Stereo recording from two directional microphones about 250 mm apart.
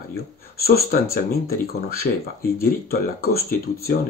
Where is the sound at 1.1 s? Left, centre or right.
Left.